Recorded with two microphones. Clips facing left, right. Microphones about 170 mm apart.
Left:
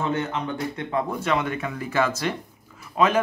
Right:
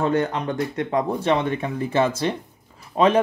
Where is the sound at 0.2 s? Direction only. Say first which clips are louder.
Right 4 dB; 40° right (ahead or behind).